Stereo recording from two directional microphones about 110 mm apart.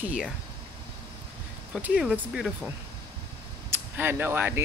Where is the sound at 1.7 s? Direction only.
10° right (ahead or behind).